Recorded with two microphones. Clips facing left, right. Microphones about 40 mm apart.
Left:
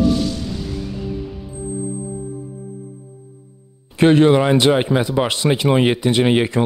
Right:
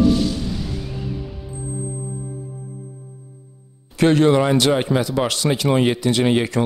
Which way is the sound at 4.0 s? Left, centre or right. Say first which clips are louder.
Left 2 dB; left.